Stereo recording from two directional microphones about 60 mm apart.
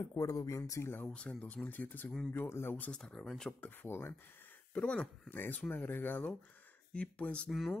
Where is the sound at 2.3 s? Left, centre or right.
Left.